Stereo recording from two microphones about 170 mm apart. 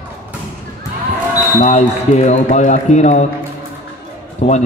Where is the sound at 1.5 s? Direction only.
45° left (ahead or behind).